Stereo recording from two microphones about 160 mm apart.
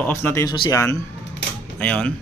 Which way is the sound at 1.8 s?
5° left (ahead or behind).